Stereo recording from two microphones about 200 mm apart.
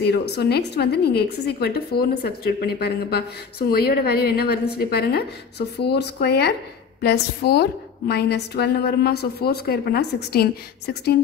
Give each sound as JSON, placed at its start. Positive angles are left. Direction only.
{"t": 0.0, "sound": "speech", "side_deg": 55}